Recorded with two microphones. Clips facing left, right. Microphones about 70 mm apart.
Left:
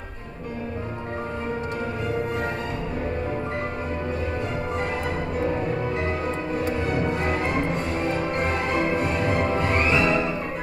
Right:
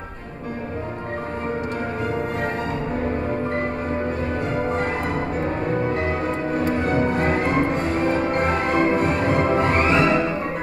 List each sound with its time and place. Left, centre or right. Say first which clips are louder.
5.4 s music: even; right